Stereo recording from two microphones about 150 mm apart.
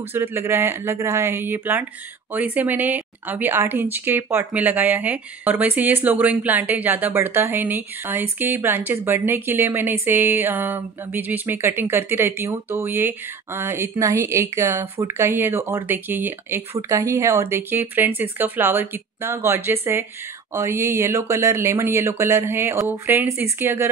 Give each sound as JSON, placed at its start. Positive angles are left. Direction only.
{"t": 0.1, "sound": "a woman's voice", "side_deg": -15}